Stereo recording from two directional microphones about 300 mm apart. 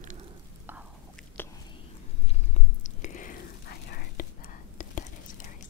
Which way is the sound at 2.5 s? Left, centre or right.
Left.